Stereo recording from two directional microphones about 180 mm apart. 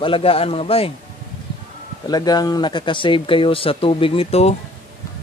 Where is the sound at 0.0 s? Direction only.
30° left (ahead or behind).